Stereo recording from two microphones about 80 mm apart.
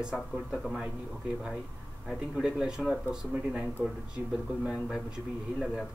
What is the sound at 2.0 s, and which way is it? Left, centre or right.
Speech, centre.